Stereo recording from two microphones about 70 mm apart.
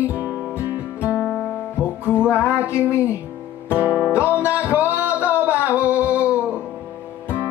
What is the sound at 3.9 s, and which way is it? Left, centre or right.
Music, left.